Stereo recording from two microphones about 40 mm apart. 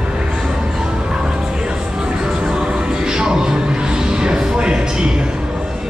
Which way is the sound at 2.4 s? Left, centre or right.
Right.